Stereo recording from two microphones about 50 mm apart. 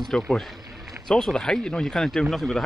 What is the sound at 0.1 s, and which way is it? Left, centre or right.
Speech, centre.